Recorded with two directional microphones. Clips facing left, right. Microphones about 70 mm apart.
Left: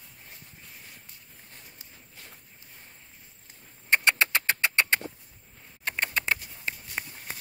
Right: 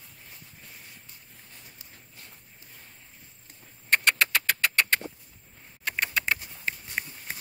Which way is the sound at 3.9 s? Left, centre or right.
Left.